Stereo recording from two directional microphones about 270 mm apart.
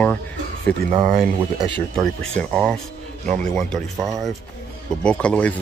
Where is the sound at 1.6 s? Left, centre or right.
Centre.